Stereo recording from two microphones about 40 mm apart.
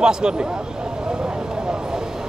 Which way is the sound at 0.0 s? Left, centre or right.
Right.